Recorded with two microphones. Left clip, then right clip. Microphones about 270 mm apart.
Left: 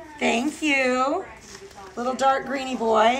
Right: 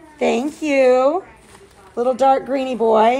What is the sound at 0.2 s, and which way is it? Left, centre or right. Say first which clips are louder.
Speech: right 4 dB; centre.